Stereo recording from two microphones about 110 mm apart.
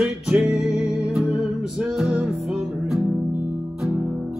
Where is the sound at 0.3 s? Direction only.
5° right (ahead or behind).